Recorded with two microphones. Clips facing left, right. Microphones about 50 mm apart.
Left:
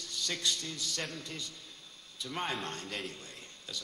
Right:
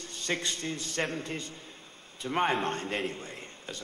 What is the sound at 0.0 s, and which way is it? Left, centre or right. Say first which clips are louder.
A man's voice: right 3 dB; right.